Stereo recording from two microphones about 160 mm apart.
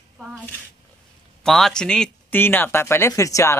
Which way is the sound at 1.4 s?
Centre (ahead or behind).